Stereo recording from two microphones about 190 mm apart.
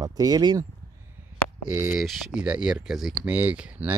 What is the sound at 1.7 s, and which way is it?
Speech, 10° right (ahead or behind).